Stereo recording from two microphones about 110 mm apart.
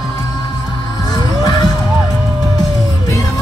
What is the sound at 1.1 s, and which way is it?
Music, 35° left (ahead or behind).